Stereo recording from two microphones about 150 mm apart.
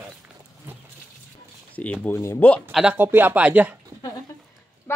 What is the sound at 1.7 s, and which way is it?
A woman's voice, 10° left (ahead or behind).